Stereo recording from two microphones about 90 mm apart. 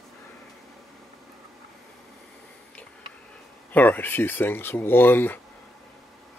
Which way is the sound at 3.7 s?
20° left (ahead or behind).